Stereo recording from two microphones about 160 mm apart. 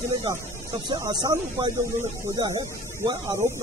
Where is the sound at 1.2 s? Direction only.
25° right (ahead or behind).